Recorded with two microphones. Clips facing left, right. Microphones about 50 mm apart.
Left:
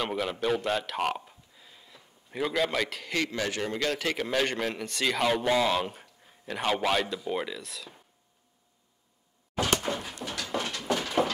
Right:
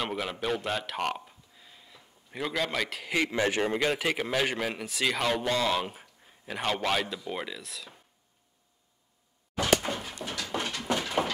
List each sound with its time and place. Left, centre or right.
0.0 s speech: centre
3.1 s a man's voice: centre
3.3 s a man's voice: right; by 7.9 s centre
9.8 s dog: centre
10.6 s a sound: centre
11.2 s a sound: right